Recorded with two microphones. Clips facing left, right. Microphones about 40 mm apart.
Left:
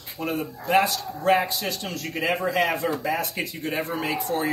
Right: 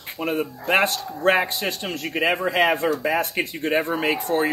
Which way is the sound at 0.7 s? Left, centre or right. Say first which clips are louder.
Even; right.